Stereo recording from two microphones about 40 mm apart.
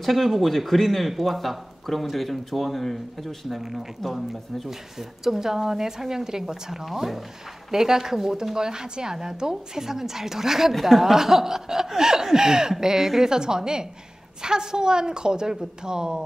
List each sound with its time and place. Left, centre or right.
0.0 s a woman's voice: centre